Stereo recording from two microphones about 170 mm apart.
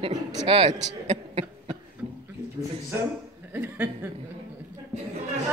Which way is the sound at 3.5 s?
10° right (ahead or behind).